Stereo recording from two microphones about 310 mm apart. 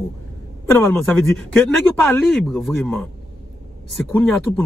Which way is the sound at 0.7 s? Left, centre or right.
Centre.